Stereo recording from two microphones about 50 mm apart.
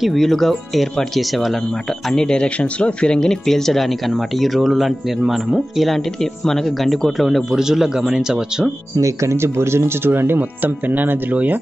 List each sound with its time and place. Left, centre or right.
0.0 s speech: centre
2.0 s speech: centre
7.5 s speech: centre
9.0 s speech: right